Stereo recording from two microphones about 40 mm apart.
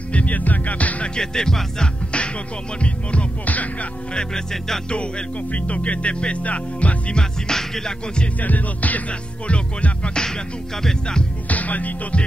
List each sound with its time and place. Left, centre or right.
0.1 s music: left
1.1 s music: centre
2.8 s heart sounds: left
5.5 s speech: left
7.2 s music: centre
8.4 s music: left
9.5 s heart sounds: left
10.2 s music: centre
11.4 s music: left